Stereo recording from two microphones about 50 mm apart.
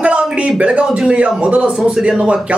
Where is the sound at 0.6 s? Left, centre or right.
Right.